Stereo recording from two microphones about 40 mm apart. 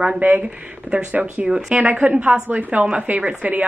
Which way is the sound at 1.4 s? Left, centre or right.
Right.